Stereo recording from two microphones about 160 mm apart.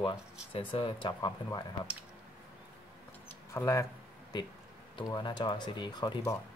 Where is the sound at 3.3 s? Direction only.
20° left (ahead or behind).